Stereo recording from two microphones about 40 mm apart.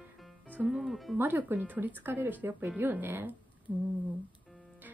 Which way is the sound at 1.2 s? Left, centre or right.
Right.